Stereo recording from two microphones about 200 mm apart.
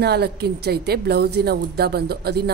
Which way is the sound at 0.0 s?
55° right (ahead or behind).